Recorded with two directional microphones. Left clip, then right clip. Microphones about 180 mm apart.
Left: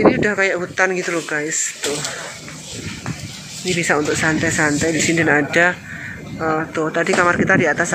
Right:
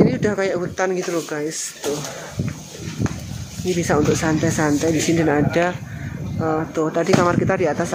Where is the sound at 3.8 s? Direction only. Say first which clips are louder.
Left 2 dB; 15° right (ahead or behind).